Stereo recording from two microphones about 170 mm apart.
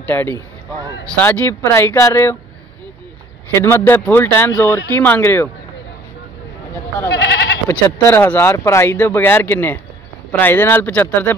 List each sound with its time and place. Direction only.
0.1 s speech: 15° left (ahead or behind)
3.5 s speech: 15° left (ahead or behind)
7.1 s goat: 75° left (ahead or behind)
7.6 s speech: 15° left (ahead or behind)